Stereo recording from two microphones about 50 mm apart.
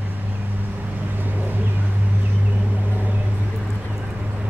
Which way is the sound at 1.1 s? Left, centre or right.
Right.